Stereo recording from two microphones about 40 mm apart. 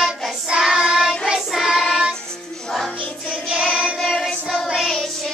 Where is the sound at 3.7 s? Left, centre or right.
Right.